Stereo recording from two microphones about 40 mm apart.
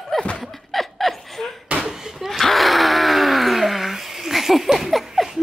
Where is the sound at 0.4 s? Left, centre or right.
Centre.